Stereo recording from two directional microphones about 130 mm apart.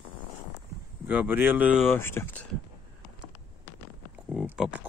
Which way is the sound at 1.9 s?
20° left (ahead or behind).